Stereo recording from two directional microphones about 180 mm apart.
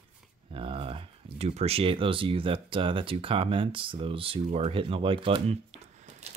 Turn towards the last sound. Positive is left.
turn(degrees=-35)  # may be behind; listen again after turning